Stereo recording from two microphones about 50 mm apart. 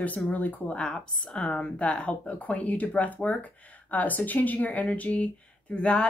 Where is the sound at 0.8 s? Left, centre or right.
Centre.